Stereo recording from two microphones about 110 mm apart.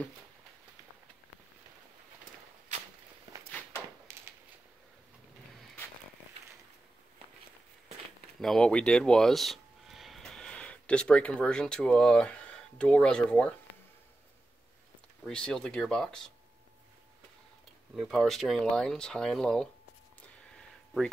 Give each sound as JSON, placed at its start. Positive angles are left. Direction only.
{"t": 4.1, "sound": "a sound", "side_deg": -25}
{"t": 8.4, "sound": "speech", "side_deg": 5}
{"t": 15.2, "sound": "speech", "side_deg": 5}
{"t": 17.9, "sound": "speech", "side_deg": 0}